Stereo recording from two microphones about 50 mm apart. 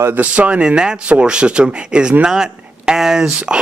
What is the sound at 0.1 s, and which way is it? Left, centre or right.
Speech, right.